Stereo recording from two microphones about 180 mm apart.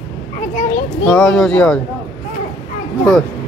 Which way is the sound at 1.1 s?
5° left (ahead or behind).